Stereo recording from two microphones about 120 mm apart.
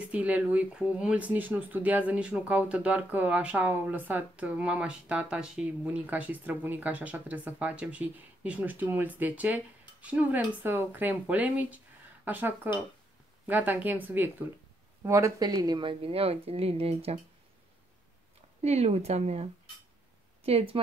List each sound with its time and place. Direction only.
0.1 s a woman's voice: 10° right (ahead or behind); by 15.9 s 35° right (ahead or behind)
15.9 s speech: 50° right (ahead or behind)
18.6 s speech: 60° right (ahead or behind)